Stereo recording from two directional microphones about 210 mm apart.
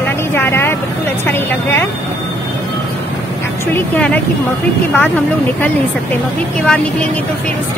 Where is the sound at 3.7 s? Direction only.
5° left (ahead or behind).